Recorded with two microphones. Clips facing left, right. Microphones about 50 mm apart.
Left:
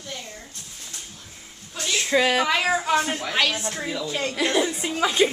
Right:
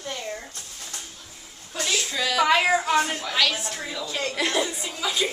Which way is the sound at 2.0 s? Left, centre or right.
Left.